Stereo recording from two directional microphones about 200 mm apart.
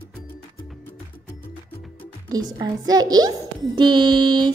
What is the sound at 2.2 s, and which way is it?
A child's voice, 20° right (ahead or behind).